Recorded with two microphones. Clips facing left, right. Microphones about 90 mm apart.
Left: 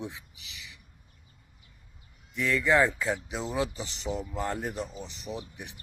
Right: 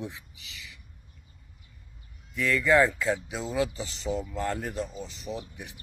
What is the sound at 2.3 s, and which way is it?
Speech, 15° left (ahead or behind).